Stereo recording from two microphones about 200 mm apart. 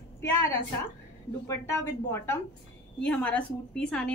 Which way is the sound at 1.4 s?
15° left (ahead or behind).